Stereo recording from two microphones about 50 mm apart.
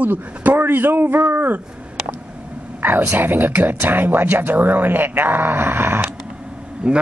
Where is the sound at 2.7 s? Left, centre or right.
Right.